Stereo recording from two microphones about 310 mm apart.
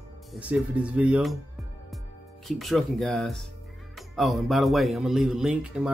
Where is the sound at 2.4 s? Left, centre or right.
Centre.